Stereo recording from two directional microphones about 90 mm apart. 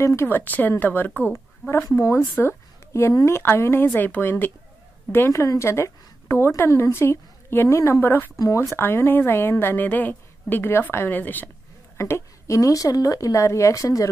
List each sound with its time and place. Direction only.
0.0 s a woman's voice: 30° left (ahead or behind)
2.0 s a woman's voice: 35° left (ahead or behind)
8.4 s speech: 40° left (ahead or behind)
8.7 s a woman's voice: 25° left (ahead or behind)
12.0 s speech: 35° left (ahead or behind)